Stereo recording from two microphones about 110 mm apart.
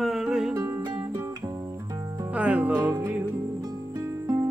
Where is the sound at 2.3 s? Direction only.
15° right (ahead or behind).